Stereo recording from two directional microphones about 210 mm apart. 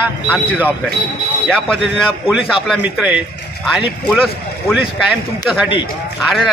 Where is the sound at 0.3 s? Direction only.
10° right (ahead or behind).